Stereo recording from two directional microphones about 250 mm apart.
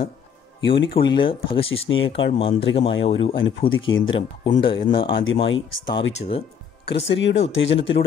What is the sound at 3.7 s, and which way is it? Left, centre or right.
Speech, left.